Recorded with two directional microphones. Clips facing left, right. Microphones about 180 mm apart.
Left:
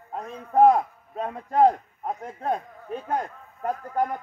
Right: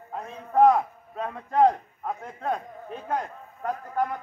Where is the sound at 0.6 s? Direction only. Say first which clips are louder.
Left 1 dB; 35° left (ahead or behind).